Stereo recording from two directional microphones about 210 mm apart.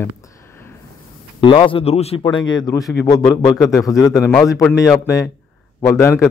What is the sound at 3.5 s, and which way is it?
Speech, centre (ahead or behind).